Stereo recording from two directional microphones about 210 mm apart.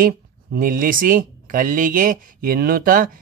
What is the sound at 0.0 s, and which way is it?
Speech, 40° right (ahead or behind).